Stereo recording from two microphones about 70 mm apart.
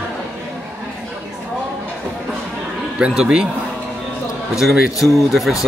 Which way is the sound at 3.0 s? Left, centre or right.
Centre.